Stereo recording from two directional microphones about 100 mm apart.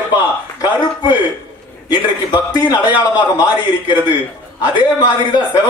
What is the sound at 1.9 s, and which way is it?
A man's voice, 45° left (ahead or behind).